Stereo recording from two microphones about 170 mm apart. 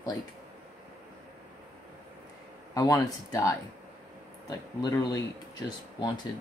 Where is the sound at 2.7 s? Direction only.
20° left (ahead or behind).